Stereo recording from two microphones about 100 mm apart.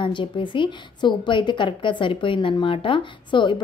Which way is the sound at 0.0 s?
55° left (ahead or behind).